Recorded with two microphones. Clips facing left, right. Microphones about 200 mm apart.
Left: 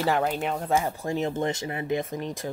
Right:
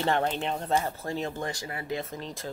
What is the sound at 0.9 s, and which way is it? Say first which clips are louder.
Speech: left 4 dB; 15° left (ahead or behind).